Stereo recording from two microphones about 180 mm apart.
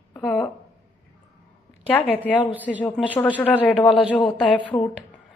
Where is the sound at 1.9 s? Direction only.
10° left (ahead or behind).